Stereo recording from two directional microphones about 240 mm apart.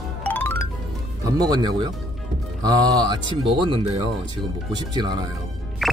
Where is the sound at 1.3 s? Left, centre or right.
Centre.